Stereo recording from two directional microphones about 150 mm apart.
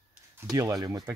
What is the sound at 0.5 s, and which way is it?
Speech, 25° right (ahead or behind).